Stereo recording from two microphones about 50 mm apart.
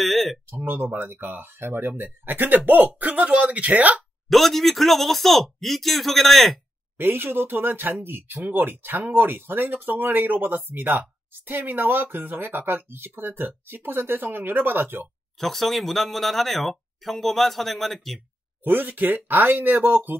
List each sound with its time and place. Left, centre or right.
0.0 s a sound: centre
0.7 s speech: right
4.3 s speech: centre
7.0 s speech: right
15.3 s speech: centre
18.6 s speech: right